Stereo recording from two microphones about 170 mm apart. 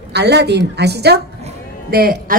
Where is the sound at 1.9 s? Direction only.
65° right (ahead or behind).